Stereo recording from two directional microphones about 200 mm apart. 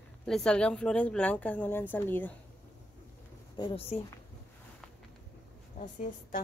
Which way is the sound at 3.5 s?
20° left (ahead or behind).